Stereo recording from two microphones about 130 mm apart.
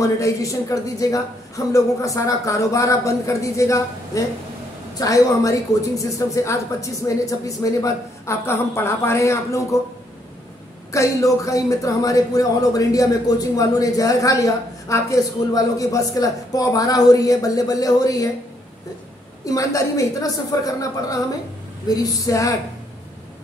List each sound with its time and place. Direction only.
0.0 s speech: 25° left (ahead or behind)
10.9 s speech: 25° left (ahead or behind)
19.4 s speech: 25° left (ahead or behind)